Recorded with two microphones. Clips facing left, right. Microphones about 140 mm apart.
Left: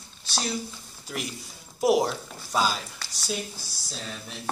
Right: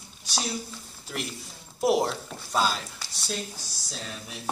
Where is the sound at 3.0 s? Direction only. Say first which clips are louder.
Left 3 dB; centre (ahead or behind).